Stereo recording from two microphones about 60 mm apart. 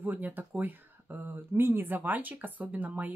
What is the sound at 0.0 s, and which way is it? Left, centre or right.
Speech, right.